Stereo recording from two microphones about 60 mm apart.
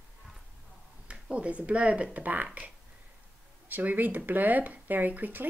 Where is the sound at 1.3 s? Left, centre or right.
Right.